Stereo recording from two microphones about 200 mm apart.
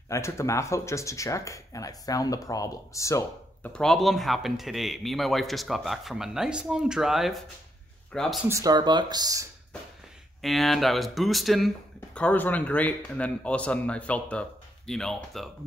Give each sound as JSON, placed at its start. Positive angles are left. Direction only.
{"t": 0.1, "sound": "speech", "side_deg": 15}
{"t": 8.5, "sound": "speech", "side_deg": -15}
{"t": 10.4, "sound": "speech", "side_deg": 0}